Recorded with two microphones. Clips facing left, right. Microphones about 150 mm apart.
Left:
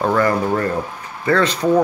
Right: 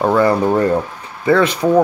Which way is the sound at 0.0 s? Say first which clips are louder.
Right 4 dB; 15° right (ahead or behind).